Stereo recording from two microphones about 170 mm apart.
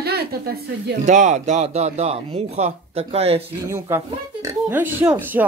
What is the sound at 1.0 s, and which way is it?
Speech, 45° right (ahead or behind).